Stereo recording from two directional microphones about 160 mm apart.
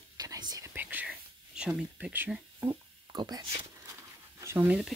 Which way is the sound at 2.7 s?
25° right (ahead or behind).